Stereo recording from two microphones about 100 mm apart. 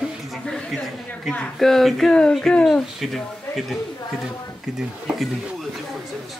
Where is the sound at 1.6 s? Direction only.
5° left (ahead or behind).